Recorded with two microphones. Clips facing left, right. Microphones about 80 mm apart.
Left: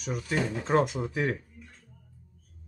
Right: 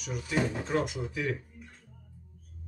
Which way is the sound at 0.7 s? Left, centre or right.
Left.